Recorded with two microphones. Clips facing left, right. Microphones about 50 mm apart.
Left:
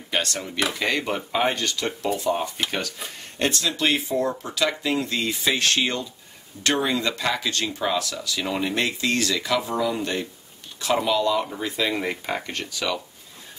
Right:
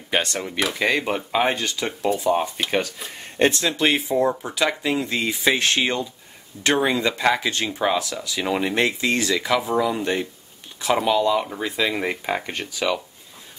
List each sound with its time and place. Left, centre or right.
0.1 s speech: right